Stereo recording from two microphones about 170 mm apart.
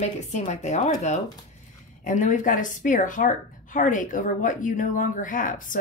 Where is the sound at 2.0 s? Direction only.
50° left (ahead or behind).